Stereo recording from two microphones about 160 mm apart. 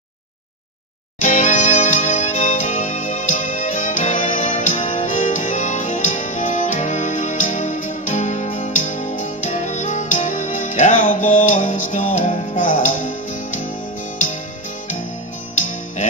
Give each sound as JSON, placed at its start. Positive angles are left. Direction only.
{"t": 1.2, "sound": "music", "side_deg": 50}